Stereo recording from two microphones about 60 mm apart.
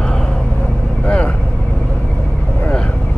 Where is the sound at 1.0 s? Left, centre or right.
Left.